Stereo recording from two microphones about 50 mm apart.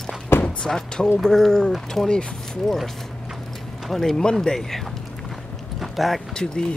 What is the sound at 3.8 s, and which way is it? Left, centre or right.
Speech, centre.